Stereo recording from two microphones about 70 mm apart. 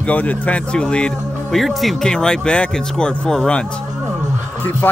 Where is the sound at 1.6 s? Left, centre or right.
Centre.